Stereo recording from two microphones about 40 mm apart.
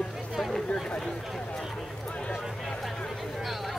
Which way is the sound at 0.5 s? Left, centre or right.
Centre.